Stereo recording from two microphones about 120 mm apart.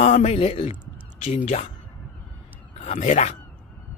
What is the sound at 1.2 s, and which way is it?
Speech, 70° left (ahead or behind).